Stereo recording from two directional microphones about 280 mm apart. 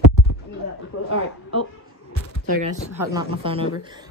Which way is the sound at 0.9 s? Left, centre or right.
Left.